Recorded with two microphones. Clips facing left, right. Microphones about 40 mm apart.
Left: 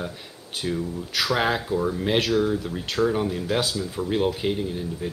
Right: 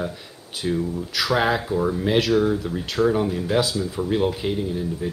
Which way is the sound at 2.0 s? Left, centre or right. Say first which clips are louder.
Right 3 dB; centre.